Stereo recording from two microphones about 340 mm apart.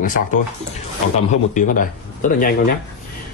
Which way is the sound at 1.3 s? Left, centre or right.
Left.